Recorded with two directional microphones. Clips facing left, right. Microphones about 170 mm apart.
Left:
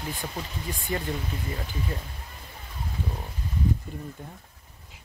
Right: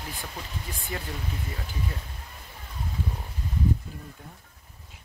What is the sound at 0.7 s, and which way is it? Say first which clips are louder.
Speech: left 6 dB; centre (ahead or behind).